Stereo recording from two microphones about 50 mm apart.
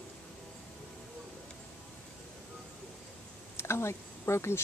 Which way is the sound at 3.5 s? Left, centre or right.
Left.